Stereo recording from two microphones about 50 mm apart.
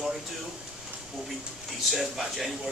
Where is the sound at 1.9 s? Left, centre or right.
Centre.